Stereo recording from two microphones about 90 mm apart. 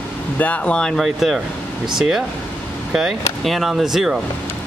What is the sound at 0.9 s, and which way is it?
Speech, centre (ahead or behind).